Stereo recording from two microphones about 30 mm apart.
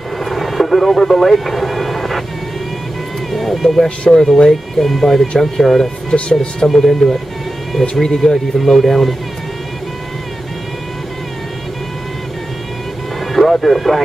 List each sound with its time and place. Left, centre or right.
0.2 s vehicle: centre
3.3 s speech: centre
7.9 s speech: centre
13.3 s speech: centre